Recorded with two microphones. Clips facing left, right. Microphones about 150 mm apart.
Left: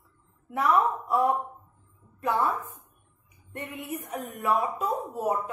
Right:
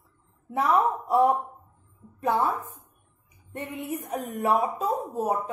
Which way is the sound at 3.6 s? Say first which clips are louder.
Right 3 dB; 20° right (ahead or behind).